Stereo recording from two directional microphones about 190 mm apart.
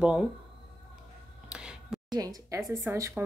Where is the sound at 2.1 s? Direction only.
20° right (ahead or behind).